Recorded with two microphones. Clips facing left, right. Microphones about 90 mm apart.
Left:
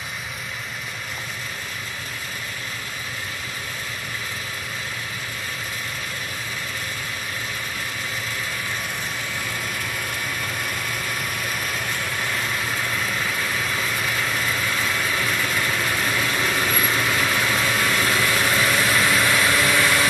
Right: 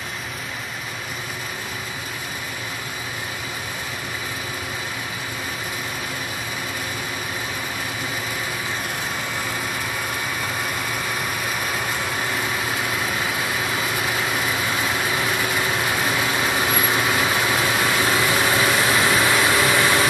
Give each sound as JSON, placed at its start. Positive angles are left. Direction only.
{"t": 10.4, "sound": "vehicle", "side_deg": -5}